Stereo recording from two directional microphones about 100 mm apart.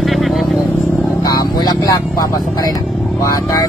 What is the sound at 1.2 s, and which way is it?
Vehicle, 40° left (ahead or behind).